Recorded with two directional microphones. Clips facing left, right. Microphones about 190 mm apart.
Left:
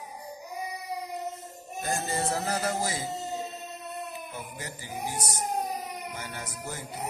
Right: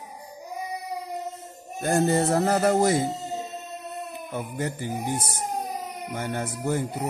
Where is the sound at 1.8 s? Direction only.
60° right (ahead or behind).